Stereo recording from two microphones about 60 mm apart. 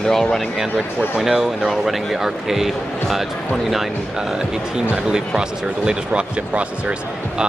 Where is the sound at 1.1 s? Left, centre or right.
Centre.